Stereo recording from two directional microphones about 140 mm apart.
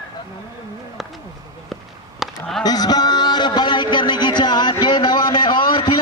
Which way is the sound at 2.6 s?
30° left (ahead or behind).